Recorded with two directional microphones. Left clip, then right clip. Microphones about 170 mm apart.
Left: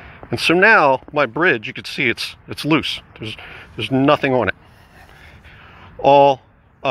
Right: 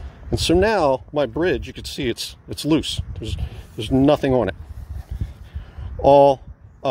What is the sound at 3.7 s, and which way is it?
Speech, 25° right (ahead or behind).